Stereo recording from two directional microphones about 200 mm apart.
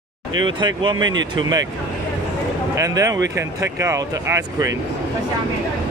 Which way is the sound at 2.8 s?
15° right (ahead or behind).